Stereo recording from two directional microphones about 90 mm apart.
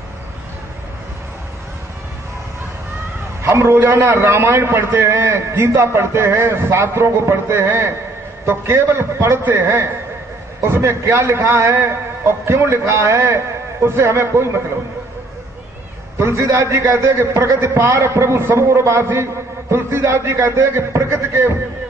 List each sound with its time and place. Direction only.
3.4 s a man's voice: 30° right (ahead or behind)
16.2 s a man's voice: 30° right (ahead or behind)